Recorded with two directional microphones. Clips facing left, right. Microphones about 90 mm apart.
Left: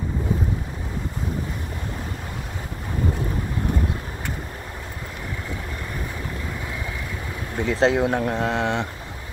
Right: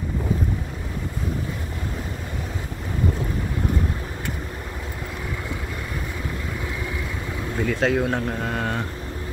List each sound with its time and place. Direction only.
7.5 s speech: 25° left (ahead or behind)